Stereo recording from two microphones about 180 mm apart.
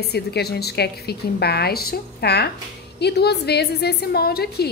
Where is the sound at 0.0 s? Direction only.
65° left (ahead or behind).